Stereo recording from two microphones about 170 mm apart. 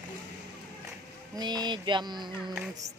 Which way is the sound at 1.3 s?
25° right (ahead or behind).